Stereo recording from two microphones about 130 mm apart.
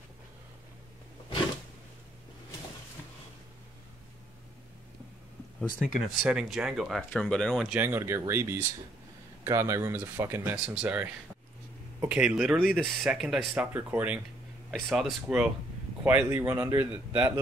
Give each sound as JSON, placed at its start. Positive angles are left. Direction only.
{"t": 5.8, "sound": "speech", "side_deg": -5}
{"t": 7.7, "sound": "speech", "side_deg": -15}
{"t": 14.7, "sound": "speech", "side_deg": 0}